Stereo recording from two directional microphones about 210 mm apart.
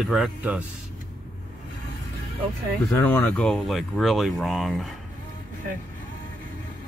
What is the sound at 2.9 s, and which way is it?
Speech, 10° left (ahead or behind).